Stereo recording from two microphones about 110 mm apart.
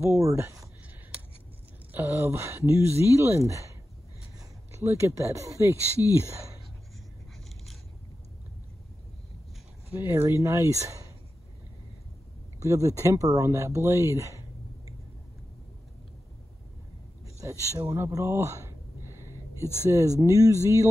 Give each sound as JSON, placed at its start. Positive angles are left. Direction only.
{"t": 0.0, "sound": "speech", "side_deg": -30}
{"t": 1.9, "sound": "speech", "side_deg": -20}
{"t": 9.9, "sound": "speech", "side_deg": -25}
{"t": 12.6, "sound": "speech", "side_deg": -25}
{"t": 17.9, "sound": "a sound", "side_deg": -25}
{"t": 19.9, "sound": "speech", "side_deg": -30}